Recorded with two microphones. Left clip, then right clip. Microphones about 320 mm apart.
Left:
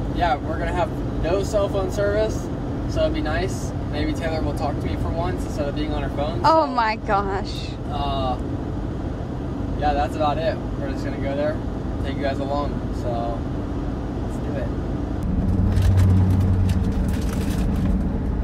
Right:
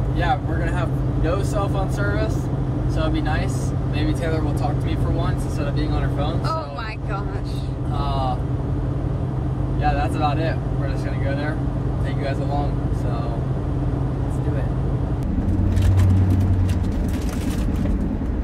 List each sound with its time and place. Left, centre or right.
6.4 s speech: left